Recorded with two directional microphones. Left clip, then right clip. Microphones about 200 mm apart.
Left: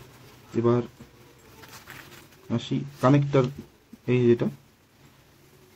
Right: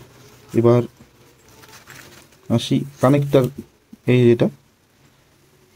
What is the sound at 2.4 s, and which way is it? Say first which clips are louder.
Speech: right 9 dB; 25° right (ahead or behind).